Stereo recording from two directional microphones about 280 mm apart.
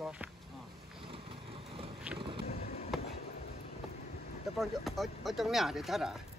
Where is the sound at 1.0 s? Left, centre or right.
Centre.